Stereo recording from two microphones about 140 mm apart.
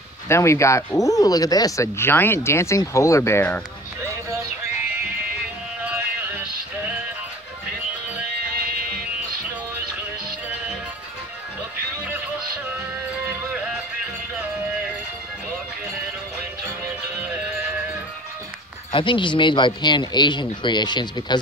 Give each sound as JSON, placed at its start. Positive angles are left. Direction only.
{"t": 0.3, "sound": "speech", "side_deg": 20}
{"t": 5.9, "sound": "music", "side_deg": -10}
{"t": 18.9, "sound": "speech", "side_deg": 35}